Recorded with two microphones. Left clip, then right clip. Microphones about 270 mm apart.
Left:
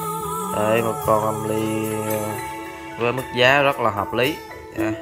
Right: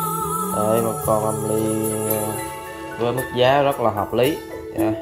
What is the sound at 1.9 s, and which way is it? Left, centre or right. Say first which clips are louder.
Jingle bell: right 1 dB; centre.